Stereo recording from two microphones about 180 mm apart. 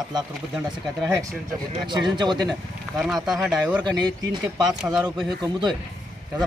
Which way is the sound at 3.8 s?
25° right (ahead or behind).